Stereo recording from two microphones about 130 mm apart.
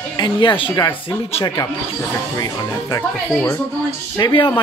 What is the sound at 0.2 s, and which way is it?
Speech, 35° left (ahead or behind).